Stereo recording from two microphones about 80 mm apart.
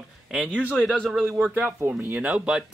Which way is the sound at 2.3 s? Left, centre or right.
Centre.